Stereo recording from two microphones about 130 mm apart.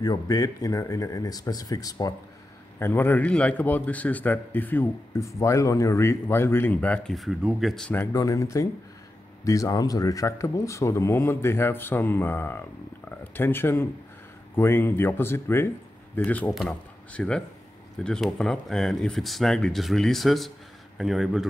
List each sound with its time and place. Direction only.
0.0 s speech: 30° left (ahead or behind)
2.8 s a man's voice: 15° left (ahead or behind); by 7.8 s centre (ahead or behind)
8.1 s a man's voice: 25° left (ahead or behind); by 21.5 s centre (ahead or behind)